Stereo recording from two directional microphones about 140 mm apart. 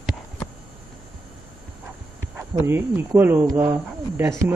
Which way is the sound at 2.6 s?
15° right (ahead or behind).